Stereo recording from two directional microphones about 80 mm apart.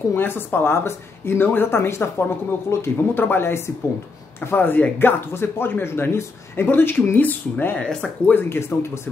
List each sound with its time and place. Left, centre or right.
0.1 s speech: left
7.8 s speech: centre
8.3 s speech: left